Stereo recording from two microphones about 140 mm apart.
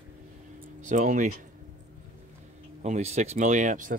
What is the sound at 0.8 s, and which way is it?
Speech, 65° right (ahead or behind).